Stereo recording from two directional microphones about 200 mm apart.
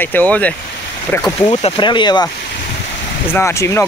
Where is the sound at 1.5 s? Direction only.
30° left (ahead or behind).